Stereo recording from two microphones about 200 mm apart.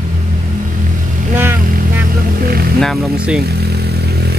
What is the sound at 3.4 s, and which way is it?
Vehicle, 55° right (ahead or behind).